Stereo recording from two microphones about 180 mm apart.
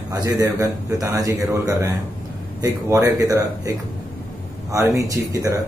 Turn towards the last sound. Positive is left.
turn(degrees=-20)  # may be behind; listen again after turning